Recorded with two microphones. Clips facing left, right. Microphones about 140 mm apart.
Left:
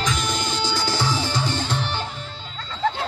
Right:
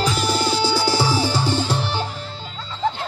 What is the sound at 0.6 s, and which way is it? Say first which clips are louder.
Music: right 5 dB; 5° right (ahead or behind).